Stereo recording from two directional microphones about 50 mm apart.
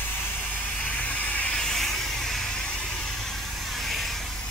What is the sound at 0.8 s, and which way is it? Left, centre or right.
Hiss, left.